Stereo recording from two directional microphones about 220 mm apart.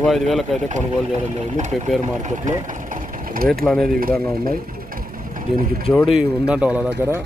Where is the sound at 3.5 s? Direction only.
Centre (ahead or behind).